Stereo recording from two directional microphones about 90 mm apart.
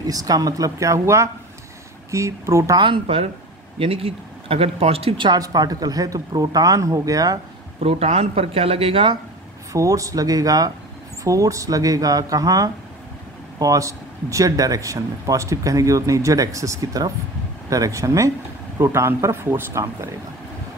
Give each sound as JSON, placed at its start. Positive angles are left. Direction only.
{"t": 0.0, "sound": "speech", "side_deg": -45}
{"t": 2.8, "sound": "speech", "side_deg": -75}
{"t": 3.7, "sound": "speech", "side_deg": -90}
{"t": 5.4, "sound": "speech", "side_deg": -45}
{"t": 7.8, "sound": "speech", "side_deg": -90}
{"t": 9.7, "sound": "speech", "side_deg": -35}